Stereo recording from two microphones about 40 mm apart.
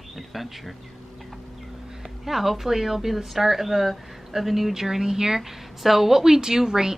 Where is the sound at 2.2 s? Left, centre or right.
Centre.